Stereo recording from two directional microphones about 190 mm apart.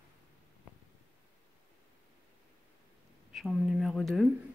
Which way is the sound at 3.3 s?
Centre (ahead or behind).